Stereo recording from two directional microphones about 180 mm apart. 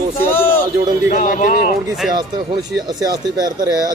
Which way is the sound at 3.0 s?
20° right (ahead or behind).